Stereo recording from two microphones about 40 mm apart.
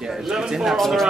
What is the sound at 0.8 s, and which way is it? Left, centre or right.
Speech, centre.